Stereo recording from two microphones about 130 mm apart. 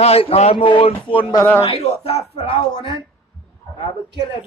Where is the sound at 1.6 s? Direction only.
50° left (ahead or behind).